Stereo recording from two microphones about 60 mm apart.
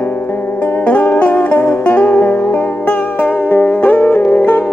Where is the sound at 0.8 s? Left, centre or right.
Left.